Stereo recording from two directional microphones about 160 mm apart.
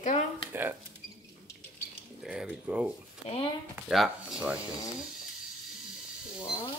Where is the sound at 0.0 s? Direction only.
45° left (ahead or behind).